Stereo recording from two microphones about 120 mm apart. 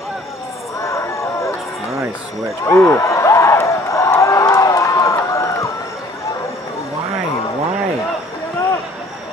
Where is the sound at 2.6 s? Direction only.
25° left (ahead or behind).